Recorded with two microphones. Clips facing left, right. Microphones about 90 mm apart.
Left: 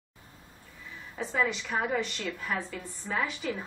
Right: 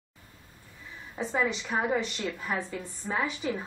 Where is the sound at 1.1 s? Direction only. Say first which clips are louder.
Right 1 dB; 20° right (ahead or behind).